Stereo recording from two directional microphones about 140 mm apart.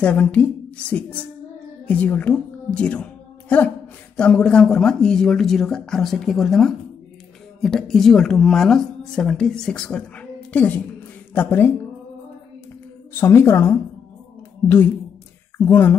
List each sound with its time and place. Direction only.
0.0 s a woman's voice: 10° left (ahead or behind)
13.2 s a woman's voice: 20° left (ahead or behind)
15.5 s speech: 15° left (ahead or behind)